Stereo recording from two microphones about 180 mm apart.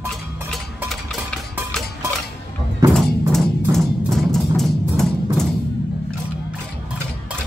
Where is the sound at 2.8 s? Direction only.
20° right (ahead or behind).